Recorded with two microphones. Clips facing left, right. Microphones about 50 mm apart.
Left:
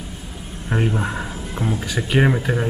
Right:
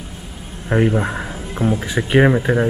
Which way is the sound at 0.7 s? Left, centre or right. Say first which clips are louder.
Right 5 dB; centre.